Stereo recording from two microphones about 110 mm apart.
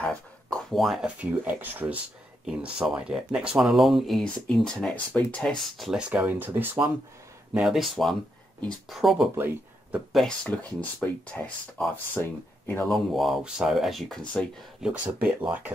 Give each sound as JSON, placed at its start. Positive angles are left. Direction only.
{"t": 0.0, "sound": "speech", "side_deg": 0}
{"t": 1.2, "sound": "speech", "side_deg": -15}
{"t": 7.5, "sound": "speech", "side_deg": 0}
{"t": 9.4, "sound": "speech", "side_deg": -20}
{"t": 10.1, "sound": "speech", "side_deg": 5}
{"t": 12.8, "sound": "speech", "side_deg": 0}
{"t": 14.8, "sound": "speech", "side_deg": -15}